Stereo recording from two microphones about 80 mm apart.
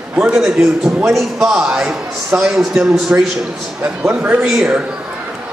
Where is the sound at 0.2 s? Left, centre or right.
Centre.